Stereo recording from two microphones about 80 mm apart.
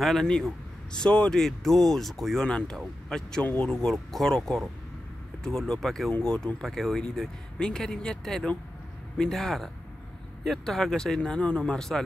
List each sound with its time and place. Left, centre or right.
0.0 s speech: centre
3.4 s speech: centre
3.7 s speech: centre